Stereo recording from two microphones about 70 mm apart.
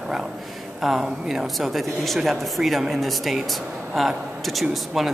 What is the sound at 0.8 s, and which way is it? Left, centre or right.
Speech, centre.